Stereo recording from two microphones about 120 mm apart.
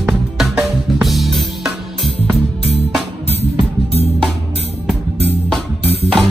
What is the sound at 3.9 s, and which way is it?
Music, 60° left (ahead or behind).